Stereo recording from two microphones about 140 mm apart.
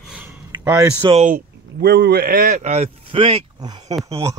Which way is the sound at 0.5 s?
25° right (ahead or behind).